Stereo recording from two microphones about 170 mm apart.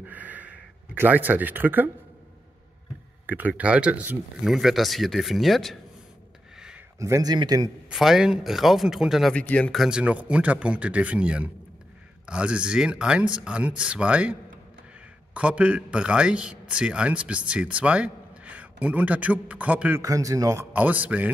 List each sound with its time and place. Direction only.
0.0 s a sound: 10° right (ahead or behind)
3.3 s speech: 10° right (ahead or behind)
7.0 s a man's voice: 20° right (ahead or behind)
7.9 s a man's voice: centre (ahead or behind)
15.3 s a man's voice: 5° right (ahead or behind)
20.0 s a man's voice: 20° right (ahead or behind)
20.7 s a man's voice: 10° right (ahead or behind)